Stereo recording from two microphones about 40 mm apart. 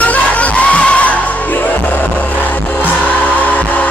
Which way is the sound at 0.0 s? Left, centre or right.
Left.